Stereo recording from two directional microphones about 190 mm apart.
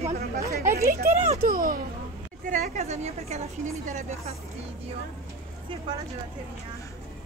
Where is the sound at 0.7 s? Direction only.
45° right (ahead or behind).